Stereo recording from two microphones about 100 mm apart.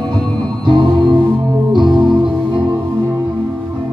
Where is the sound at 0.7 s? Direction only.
50° right (ahead or behind).